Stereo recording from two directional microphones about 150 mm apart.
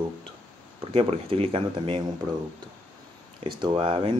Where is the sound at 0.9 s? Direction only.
40° right (ahead or behind).